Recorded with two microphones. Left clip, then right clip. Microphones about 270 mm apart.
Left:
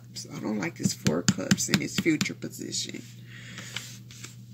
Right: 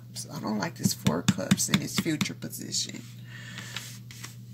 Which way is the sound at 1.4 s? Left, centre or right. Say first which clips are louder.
Left 1 dB; centre.